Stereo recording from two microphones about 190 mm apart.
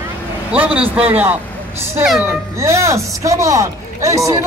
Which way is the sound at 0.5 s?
5° right (ahead or behind).